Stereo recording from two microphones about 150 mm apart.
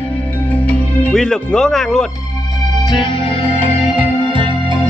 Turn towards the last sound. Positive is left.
turn(degrees=-35)  # may be behind; listen again after turning